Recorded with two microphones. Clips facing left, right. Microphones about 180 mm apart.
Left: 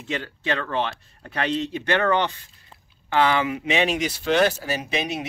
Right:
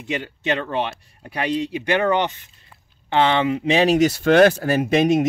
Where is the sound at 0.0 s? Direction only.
15° right (ahead or behind).